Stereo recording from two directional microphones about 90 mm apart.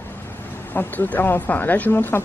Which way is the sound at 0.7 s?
20° left (ahead or behind).